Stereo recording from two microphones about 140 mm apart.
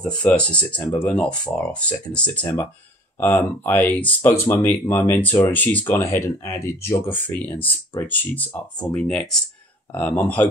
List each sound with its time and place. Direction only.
0.2 s speech: 10° left (ahead or behind)